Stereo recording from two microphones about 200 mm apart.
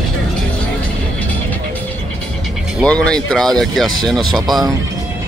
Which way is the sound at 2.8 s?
5° left (ahead or behind).